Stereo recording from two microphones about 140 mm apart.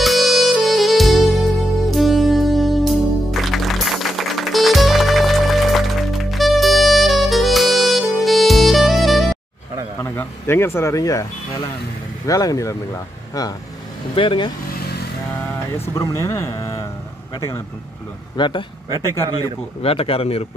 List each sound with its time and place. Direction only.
0.0 s saxophone: centre (ahead or behind)
1.9 s music: centre (ahead or behind)
10.0 s speech: 15° left (ahead or behind)
12.3 s speech: 25° left (ahead or behind)
14.1 s speech: 35° left (ahead or behind)
15.9 s speech: 20° left (ahead or behind)
18.3 s speech: 35° left (ahead or behind)
19.8 s speech: 45° left (ahead or behind)